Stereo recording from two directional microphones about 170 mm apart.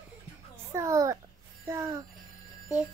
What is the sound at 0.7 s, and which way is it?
Babbling, 20° right (ahead or behind).